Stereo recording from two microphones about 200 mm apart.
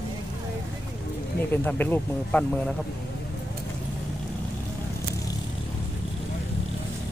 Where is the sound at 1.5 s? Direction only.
10° left (ahead or behind).